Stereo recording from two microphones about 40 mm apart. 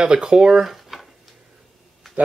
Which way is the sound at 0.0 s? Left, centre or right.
Right.